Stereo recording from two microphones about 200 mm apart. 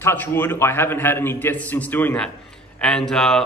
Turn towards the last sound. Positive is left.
turn(degrees=0)  # may be behind; listen again after turning